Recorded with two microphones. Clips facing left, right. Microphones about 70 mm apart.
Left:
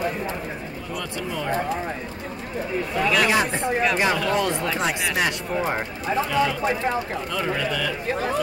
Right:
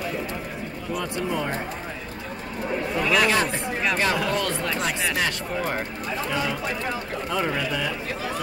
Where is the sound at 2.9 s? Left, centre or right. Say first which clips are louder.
Left 1 dB; centre.